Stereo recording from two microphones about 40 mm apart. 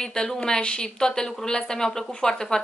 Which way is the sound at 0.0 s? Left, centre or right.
Centre.